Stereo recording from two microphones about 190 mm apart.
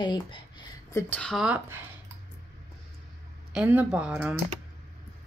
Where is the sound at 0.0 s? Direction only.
25° left (ahead or behind).